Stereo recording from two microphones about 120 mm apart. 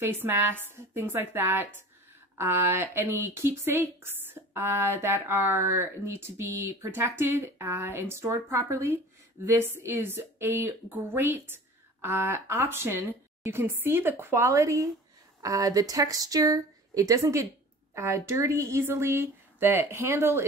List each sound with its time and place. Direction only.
0.0 s speech: 20° right (ahead or behind)